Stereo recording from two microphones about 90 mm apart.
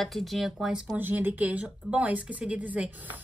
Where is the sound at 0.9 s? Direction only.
20° right (ahead or behind).